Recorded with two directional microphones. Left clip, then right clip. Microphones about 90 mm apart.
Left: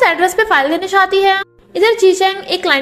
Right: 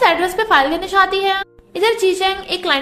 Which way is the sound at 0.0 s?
40° left (ahead or behind).